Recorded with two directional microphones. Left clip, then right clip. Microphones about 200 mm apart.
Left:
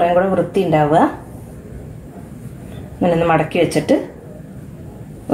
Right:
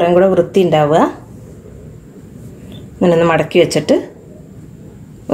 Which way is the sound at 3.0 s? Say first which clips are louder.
Right 3 dB; 45° right (ahead or behind).